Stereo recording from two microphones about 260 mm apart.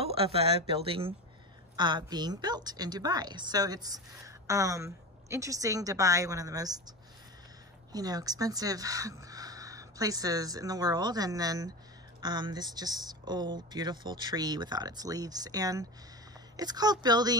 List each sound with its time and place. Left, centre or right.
0.0 s a woman's voice: right
7.9 s a woman's voice: centre